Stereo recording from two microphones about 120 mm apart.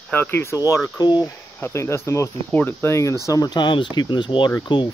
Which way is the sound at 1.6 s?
20° left (ahead or behind).